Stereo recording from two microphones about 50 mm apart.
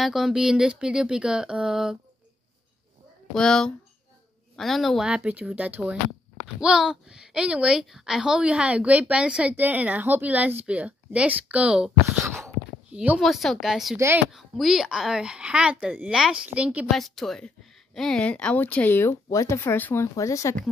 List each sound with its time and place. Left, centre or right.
0.0 s a woman's voice: centre
3.3 s a woman's voice: centre
5.0 s a woman's voice: right
6.4 s a woman's voice: centre; by 11.7 s right
13.2 s a woman's voice: centre
13.6 s a woman's voice: centre
16.4 s a woman's voice: right
16.9 s a woman's voice: centre
18.2 s speech: left
18.9 s speech: left
19.3 s speech: left
19.6 s speech: left
20.0 s speech: left